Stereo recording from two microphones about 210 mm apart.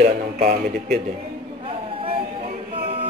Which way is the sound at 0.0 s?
35° right (ahead or behind).